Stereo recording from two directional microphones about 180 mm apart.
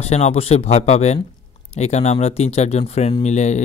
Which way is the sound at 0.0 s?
35° left (ahead or behind).